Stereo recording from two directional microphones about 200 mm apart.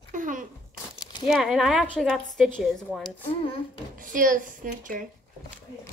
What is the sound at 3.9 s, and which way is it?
A woman's voice, 45° right (ahead or behind).